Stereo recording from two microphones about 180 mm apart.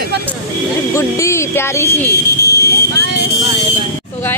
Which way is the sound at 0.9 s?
15° left (ahead or behind).